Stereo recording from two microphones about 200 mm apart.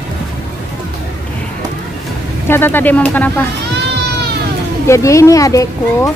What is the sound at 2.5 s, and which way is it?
Speech, 10° left (ahead or behind).